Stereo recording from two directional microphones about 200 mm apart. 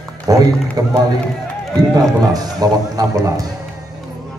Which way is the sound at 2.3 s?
20° right (ahead or behind).